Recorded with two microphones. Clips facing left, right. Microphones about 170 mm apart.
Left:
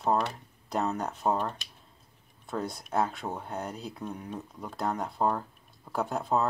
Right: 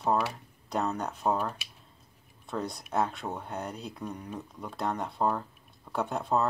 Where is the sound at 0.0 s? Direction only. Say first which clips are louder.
Even; centre (ahead or behind).